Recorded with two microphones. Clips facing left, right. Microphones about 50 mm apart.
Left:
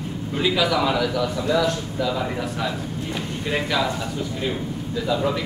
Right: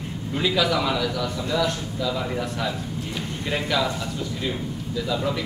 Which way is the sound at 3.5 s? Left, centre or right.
Centre.